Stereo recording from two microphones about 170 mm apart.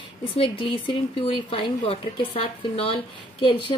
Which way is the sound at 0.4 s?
30° left (ahead or behind).